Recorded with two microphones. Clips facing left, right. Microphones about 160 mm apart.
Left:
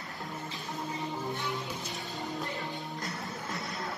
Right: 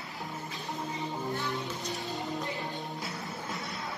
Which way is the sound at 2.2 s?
20° right (ahead or behind).